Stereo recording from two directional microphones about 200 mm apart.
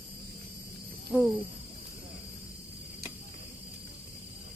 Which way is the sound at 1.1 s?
5° right (ahead or behind).